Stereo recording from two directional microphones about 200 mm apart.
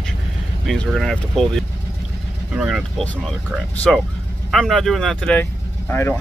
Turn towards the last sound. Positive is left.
turn(degrees=10)  # may be behind; listen again after turning